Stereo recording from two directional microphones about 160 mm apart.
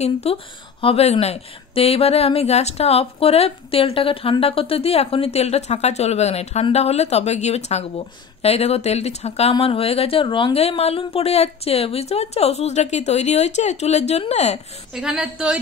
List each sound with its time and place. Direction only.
0.0 s a woman's voice: 40° left (ahead or behind)
15.0 s speech: 5° right (ahead or behind)